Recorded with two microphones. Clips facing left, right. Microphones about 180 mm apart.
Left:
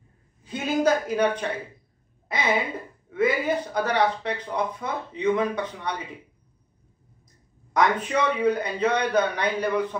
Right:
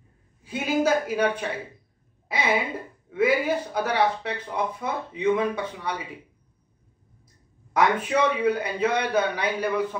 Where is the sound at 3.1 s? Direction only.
5° right (ahead or behind).